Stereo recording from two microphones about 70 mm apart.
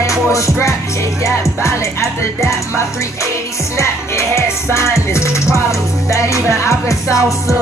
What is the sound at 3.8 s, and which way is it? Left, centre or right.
Music, left.